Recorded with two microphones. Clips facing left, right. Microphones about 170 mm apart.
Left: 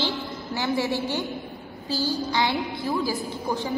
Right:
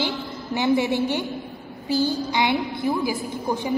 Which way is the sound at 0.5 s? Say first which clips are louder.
Right 5 dB; 20° right (ahead or behind).